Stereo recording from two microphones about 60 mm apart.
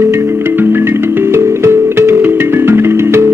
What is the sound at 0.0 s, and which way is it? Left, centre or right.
Music, right.